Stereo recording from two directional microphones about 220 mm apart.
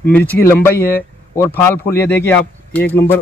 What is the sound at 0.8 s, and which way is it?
Speech, 40° left (ahead or behind).